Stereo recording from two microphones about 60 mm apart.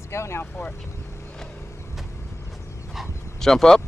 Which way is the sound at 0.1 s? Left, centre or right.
Left.